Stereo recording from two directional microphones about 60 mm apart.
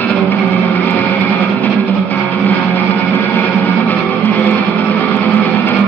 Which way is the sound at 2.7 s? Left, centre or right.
Left.